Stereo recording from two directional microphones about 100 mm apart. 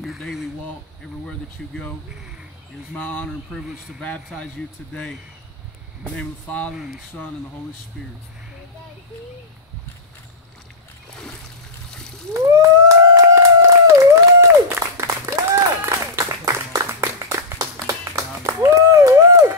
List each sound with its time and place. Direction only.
0.0 s a sound: centre (ahead or behind)
1.6 s speech: 5° left (ahead or behind)
3.0 s speech: 15° left (ahead or behind)
6.1 s speech: 15° left (ahead or behind)
12.4 s howl: 35° right (ahead or behind)
17.0 s clapping: 35° right (ahead or behind)
17.8 s a sound: 30° right (ahead or behind)